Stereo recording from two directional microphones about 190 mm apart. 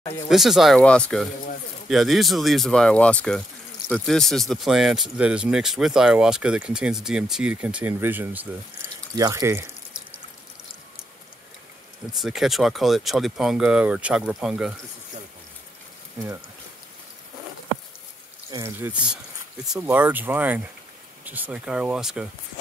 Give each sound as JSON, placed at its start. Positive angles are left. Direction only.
{"t": 0.0, "sound": "speech", "side_deg": 15}
{"t": 0.3, "sound": "speech", "side_deg": 0}
{"t": 12.2, "sound": "speech", "side_deg": 0}
{"t": 18.5, "sound": "speech", "side_deg": -15}